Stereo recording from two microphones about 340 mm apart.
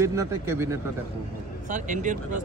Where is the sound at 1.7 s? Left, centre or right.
Right.